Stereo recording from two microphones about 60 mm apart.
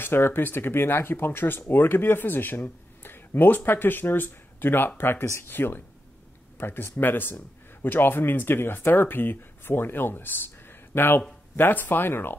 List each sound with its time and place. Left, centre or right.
0.0 s speech: left
5.2 s speech: left
5.5 s speech: left